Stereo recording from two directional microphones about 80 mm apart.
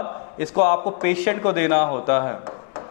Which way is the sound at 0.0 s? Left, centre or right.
Centre.